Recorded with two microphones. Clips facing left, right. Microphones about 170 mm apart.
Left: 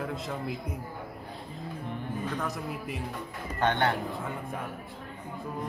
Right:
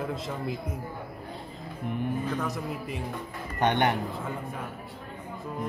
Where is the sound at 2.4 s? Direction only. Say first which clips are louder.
Right 2 dB; centre (ahead or behind).